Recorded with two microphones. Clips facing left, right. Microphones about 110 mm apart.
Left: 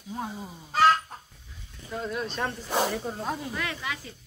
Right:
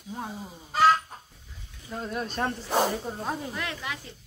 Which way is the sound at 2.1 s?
45° right (ahead or behind).